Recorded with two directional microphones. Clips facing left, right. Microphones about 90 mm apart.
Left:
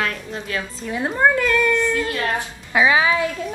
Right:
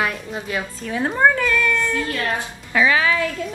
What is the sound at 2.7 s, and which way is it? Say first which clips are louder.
Speech: left 1 dB; 20° left (ahead or behind).